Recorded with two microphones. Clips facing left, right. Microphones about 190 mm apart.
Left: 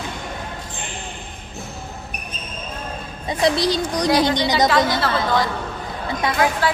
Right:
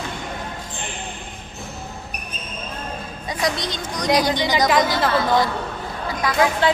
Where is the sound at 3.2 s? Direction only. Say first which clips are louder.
Left 6 dB; 30° left (ahead or behind).